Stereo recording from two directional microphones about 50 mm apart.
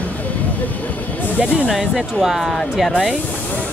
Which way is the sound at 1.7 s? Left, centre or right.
Centre.